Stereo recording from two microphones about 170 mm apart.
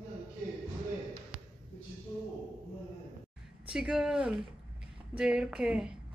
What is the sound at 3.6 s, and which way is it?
Speech, 5° right (ahead or behind).